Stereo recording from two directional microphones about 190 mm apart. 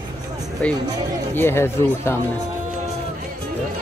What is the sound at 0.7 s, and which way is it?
Speech, 20° right (ahead or behind).